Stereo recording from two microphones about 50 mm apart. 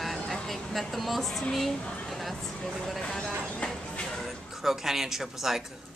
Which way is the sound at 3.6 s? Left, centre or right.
Centre.